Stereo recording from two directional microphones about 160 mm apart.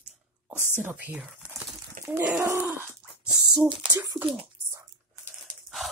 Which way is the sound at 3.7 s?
30° right (ahead or behind).